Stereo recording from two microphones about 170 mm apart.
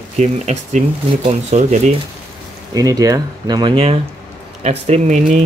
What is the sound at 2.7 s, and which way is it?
Speech, 20° right (ahead or behind).